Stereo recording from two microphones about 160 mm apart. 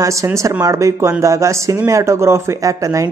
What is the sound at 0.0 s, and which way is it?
Speech, 20° right (ahead or behind).